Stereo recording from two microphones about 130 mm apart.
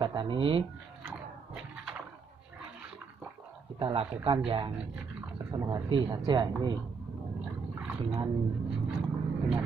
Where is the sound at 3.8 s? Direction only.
40° right (ahead or behind).